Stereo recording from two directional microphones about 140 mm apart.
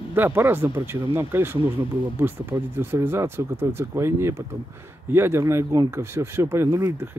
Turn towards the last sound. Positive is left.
turn(degrees=-20)  # may be behind; listen again after turning